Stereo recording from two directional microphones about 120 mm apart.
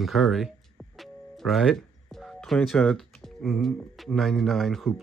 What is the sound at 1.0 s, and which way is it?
Music, centre (ahead or behind).